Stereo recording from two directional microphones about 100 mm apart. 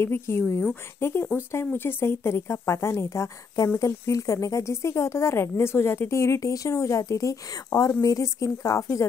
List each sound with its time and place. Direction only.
0.0 s speech: 25° left (ahead or behind)